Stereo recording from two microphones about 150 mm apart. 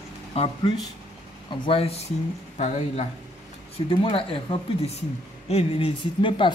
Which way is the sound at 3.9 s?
35° left (ahead or behind).